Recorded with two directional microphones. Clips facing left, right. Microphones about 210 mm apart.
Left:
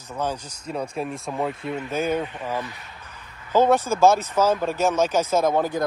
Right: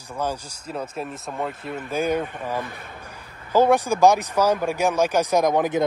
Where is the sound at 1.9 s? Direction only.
10° right (ahead or behind).